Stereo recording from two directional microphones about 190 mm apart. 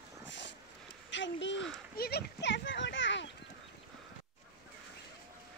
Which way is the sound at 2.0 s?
55° left (ahead or behind).